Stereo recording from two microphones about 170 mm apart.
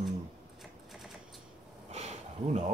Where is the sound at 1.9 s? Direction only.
40° right (ahead or behind).